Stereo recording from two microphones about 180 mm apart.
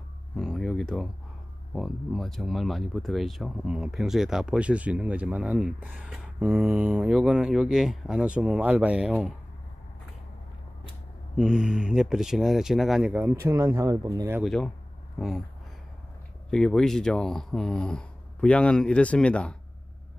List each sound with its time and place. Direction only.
0.4 s a sound: 5° left (ahead or behind)
1.7 s speech: centre (ahead or behind)
11.3 s speech: 5° right (ahead or behind); by 14.3 s 20° right (ahead or behind)
14.4 s speech: centre (ahead or behind)
16.4 s speech: centre (ahead or behind)